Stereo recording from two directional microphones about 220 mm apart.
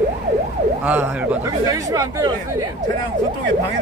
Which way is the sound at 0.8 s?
5° right (ahead or behind).